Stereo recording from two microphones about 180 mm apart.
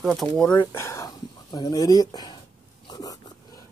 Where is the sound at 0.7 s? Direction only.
15° left (ahead or behind).